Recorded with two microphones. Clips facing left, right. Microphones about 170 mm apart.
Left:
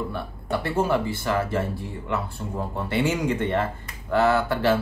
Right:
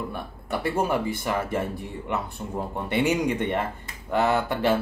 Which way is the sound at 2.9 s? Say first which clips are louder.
Right 1 dB; 15° right (ahead or behind).